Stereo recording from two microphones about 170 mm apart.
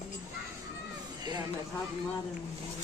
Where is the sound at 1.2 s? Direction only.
25° right (ahead or behind).